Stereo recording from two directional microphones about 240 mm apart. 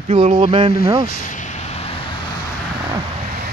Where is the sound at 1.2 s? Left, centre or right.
Left.